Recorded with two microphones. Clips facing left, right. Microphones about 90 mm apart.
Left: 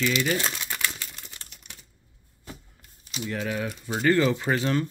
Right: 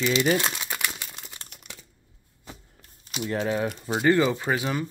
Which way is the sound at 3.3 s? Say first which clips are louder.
Right 4 dB; 30° right (ahead or behind).